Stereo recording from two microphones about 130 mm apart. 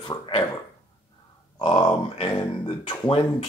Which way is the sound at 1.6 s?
40° left (ahead or behind).